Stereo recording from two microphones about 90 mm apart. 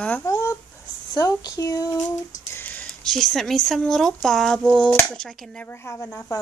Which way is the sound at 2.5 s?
20° left (ahead or behind).